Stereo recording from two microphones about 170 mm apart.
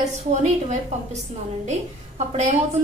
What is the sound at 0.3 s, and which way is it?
Speech, 45° right (ahead or behind).